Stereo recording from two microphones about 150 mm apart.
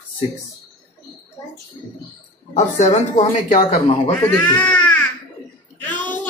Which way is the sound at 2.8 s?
50° left (ahead or behind).